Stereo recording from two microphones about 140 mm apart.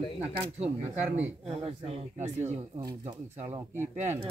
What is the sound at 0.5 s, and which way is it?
Speech, 50° right (ahead or behind).